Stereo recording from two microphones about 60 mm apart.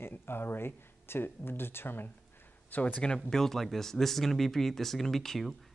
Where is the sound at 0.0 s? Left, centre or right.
Left.